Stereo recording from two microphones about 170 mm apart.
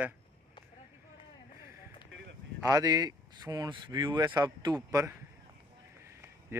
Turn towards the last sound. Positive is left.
turn(degrees=-20)  # may be behind; listen again after turning